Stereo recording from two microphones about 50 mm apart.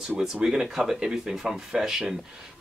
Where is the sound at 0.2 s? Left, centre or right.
Centre.